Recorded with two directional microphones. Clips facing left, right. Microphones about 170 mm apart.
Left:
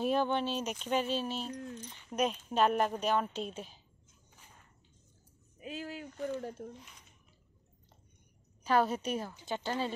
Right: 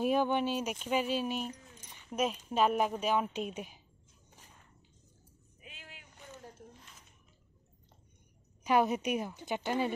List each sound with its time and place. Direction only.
0.0 s speech: 10° right (ahead or behind)
5.6 s a sound: 40° left (ahead or behind)
6.1 s speech: 70° left (ahead or behind)
6.8 s drip: centre (ahead or behind)
8.6 s speech: 15° right (ahead or behind)